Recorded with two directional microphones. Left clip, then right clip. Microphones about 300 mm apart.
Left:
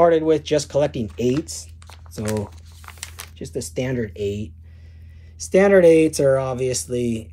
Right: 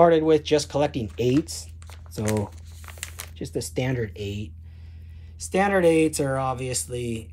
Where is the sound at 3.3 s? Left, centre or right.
Right.